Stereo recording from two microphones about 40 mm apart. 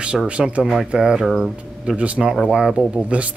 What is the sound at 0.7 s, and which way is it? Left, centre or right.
Speech, centre.